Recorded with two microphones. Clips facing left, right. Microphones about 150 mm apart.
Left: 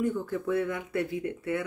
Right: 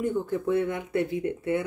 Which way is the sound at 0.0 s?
25° right (ahead or behind).